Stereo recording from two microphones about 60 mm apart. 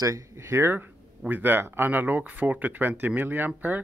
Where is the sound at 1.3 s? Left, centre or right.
Right.